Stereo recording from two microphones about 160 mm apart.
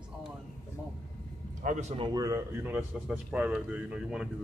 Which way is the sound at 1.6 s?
50° right (ahead or behind).